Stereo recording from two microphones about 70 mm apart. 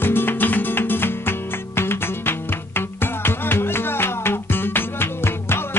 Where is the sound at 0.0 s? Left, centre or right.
Left.